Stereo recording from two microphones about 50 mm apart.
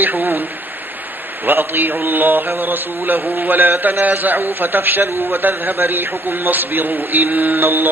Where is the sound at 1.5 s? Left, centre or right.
Right.